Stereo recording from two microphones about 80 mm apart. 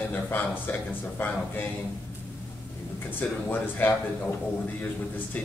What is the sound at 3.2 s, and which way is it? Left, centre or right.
Speech, centre.